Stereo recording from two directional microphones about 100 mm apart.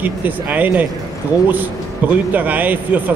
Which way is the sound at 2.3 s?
15° right (ahead or behind).